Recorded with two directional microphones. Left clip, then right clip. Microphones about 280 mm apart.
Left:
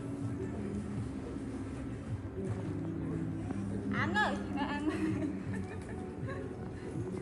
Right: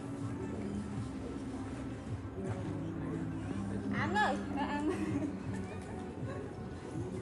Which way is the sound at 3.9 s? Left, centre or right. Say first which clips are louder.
Even; right.